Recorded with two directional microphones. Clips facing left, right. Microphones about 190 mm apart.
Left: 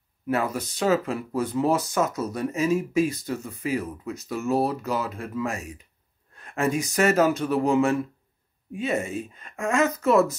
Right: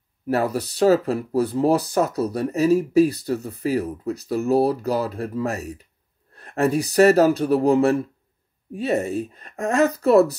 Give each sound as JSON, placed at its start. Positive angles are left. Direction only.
{"t": 0.3, "sound": "speech", "side_deg": -35}